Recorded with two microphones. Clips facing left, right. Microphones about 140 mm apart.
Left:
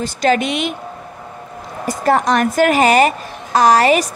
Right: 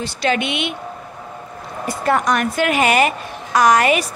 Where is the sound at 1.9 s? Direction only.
35° left (ahead or behind).